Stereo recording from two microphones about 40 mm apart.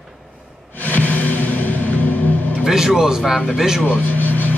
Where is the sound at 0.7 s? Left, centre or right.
Left.